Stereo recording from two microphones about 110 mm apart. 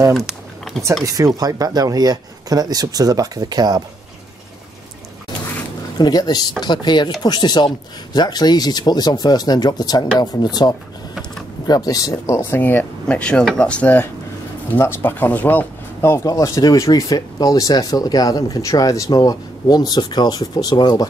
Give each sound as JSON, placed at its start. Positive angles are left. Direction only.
{"t": 0.1, "sound": "typing", "side_deg": 0}
{"t": 1.0, "sound": "speech", "side_deg": -35}
{"t": 5.9, "sound": "speech", "side_deg": 40}
{"t": 12.4, "sound": "speech", "side_deg": 20}